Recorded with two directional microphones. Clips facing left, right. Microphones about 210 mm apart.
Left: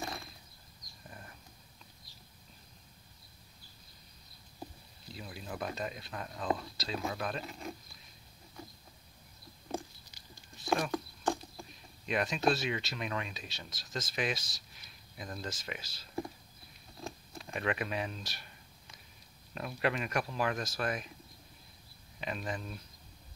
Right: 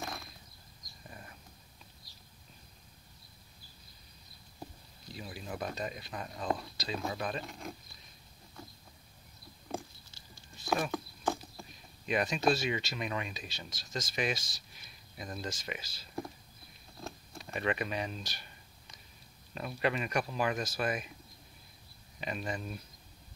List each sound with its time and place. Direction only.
5.1 s speech: centre (ahead or behind)
10.1 s a sound: 15° left (ahead or behind)
10.6 s patter: 5° right (ahead or behind)
12.1 s speech: centre (ahead or behind)
17.0 s a sound: centre (ahead or behind)
19.5 s speech: centre (ahead or behind)
22.2 s speech: 5° right (ahead or behind)